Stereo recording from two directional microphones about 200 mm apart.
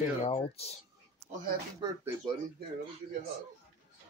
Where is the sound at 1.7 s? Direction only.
20° right (ahead or behind).